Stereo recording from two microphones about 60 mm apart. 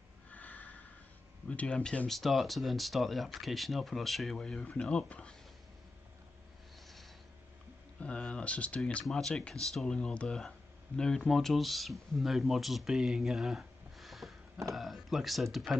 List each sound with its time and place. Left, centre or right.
0.3 s snort: left
1.5 s speech: centre
8.0 s speech: centre